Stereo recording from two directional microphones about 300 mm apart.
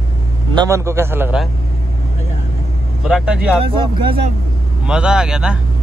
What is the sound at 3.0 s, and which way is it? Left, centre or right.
Speech, centre.